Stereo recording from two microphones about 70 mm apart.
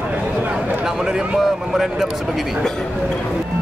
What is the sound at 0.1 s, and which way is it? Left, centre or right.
A man's voice, centre.